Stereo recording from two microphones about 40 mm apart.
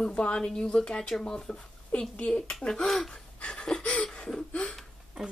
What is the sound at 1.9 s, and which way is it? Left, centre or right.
Speech, left.